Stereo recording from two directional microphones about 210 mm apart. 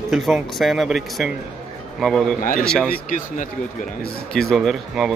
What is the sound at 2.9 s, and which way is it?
Speech, 40° left (ahead or behind).